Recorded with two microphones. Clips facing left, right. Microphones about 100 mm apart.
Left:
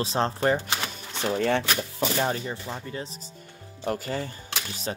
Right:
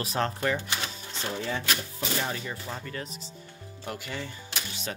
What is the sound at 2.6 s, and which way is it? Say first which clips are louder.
Speech: left 2 dB; 20° left (ahead or behind).